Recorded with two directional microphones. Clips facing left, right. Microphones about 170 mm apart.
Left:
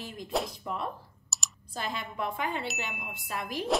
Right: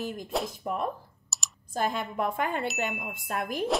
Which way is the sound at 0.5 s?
50° right (ahead or behind).